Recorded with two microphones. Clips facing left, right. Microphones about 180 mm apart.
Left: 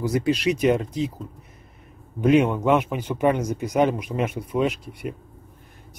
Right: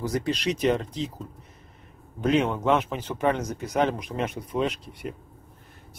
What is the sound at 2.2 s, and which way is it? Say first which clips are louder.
Speech: left 4 dB; 10° left (ahead or behind).